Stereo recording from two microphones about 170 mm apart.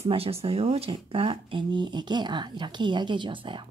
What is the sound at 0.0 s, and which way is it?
Speech, 35° right (ahead or behind).